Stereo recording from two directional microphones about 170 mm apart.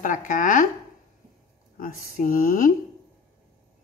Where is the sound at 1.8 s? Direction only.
55° left (ahead or behind).